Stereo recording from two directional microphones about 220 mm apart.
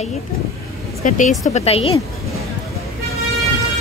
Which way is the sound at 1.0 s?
35° left (ahead or behind).